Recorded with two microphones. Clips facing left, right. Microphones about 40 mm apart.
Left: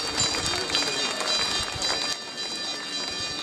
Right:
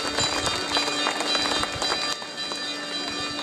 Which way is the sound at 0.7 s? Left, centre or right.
Right.